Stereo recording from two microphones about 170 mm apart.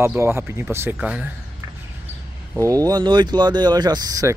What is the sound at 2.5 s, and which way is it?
Speech, 20° right (ahead or behind).